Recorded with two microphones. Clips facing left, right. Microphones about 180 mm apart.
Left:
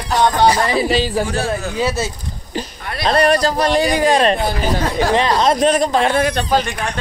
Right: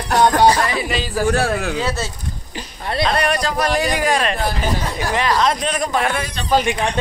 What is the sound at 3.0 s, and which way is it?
A man's voice, 35° left (ahead or behind).